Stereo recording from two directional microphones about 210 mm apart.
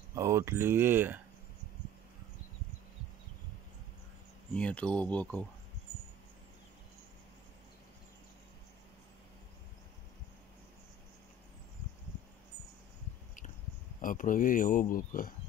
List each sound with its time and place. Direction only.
0.1 s speech: 15° right (ahead or behind)
4.6 s speech: 5° left (ahead or behind)
14.0 s speech: 40° left (ahead or behind)